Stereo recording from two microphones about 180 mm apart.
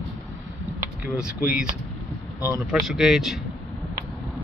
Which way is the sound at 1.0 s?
5° right (ahead or behind).